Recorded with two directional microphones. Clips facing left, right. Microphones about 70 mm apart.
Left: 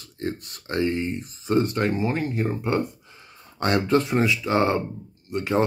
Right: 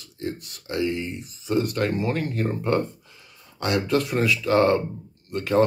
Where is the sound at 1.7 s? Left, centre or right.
Left.